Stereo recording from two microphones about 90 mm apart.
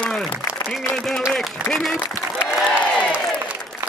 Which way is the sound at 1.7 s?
Centre (ahead or behind).